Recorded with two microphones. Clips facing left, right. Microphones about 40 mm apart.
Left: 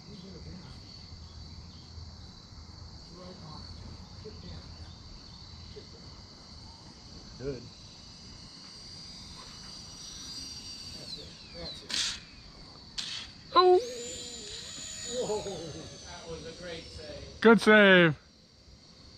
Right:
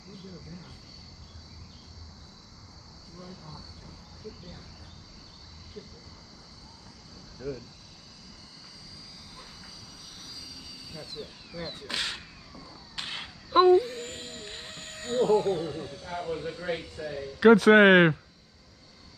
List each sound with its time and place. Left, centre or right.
5.8 s speech: right
7.4 s speech: centre
9.9 s ratchet: centre
11.5 s speech: right
11.8 s speech: centre
12.5 s a sound: right
13.5 s speech: centre
13.7 s a sound: right
17.4 s speech: centre